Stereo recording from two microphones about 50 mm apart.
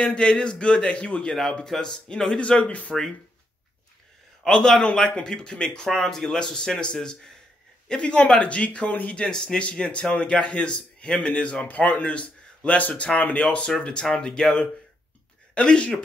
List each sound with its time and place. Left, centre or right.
0.0 s a man's voice: centre
4.5 s a man's voice: centre